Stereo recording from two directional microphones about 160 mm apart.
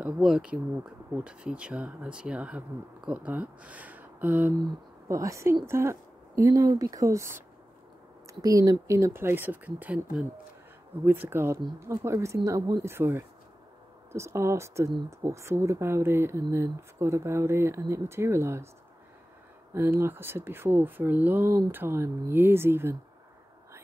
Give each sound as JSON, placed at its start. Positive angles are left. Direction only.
{"t": 0.0, "sound": "speech", "side_deg": -5}
{"t": 11.1, "sound": "speech", "side_deg": -15}
{"t": 19.7, "sound": "speech", "side_deg": -15}